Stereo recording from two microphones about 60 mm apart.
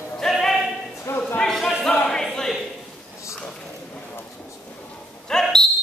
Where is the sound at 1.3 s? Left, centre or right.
Centre.